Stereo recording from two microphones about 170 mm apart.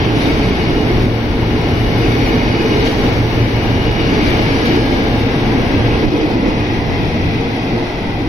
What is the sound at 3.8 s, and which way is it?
Train, centre (ahead or behind).